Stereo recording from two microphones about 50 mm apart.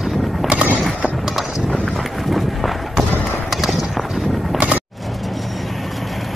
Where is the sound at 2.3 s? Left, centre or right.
Centre.